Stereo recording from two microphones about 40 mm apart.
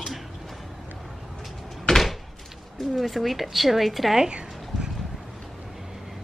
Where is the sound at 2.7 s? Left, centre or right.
Centre.